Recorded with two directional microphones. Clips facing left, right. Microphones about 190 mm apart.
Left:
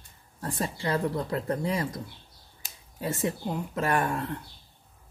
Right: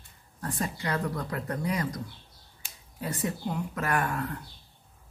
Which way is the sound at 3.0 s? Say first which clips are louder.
Left 2 dB; 25° left (ahead or behind).